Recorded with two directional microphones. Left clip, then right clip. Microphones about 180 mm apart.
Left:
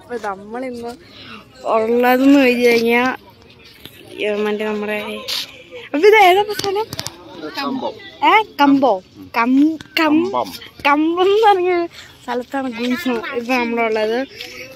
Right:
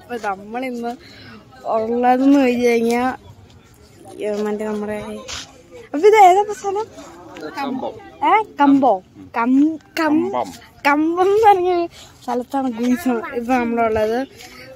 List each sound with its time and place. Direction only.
0.1 s speech: 5° right (ahead or behind)
1.6 s speech: 15° left (ahead or behind)
1.9 s speech: centre (ahead or behind)
4.2 s speech: centre (ahead or behind)
7.4 s speech: 20° left (ahead or behind)
8.2 s speech: centre (ahead or behind)
14.4 s a sound: 15° right (ahead or behind)